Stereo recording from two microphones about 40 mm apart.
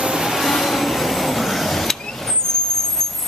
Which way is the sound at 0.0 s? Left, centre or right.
Centre.